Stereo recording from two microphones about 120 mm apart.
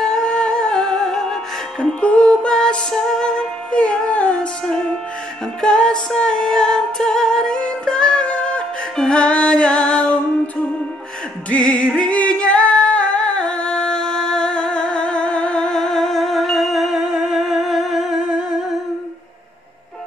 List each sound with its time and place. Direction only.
0.0 s music: 5° left (ahead or behind)
11.5 s singing: 10° left (ahead or behind)